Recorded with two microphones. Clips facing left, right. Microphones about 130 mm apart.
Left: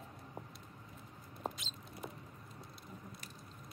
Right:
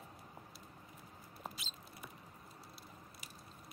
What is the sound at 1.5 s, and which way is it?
Rodents, 5° right (ahead or behind).